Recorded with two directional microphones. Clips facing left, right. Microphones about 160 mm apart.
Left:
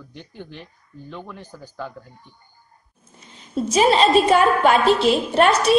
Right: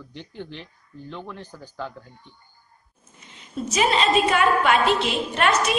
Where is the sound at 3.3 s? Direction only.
35° left (ahead or behind).